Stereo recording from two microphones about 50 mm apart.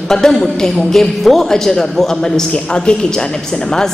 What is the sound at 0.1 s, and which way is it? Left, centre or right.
A man's voice, centre.